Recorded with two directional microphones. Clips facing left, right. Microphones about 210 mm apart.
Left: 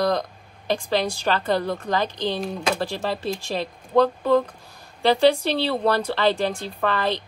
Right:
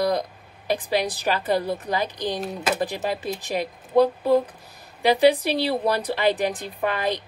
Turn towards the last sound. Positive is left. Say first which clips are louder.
# left 1 dB
turn(degrees=-15)  # may be behind; listen again after turning